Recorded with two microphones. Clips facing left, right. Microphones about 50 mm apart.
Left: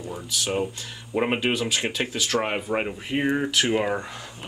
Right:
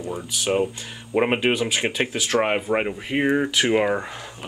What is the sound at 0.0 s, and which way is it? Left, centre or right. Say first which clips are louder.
Speech: right 3 dB; centre.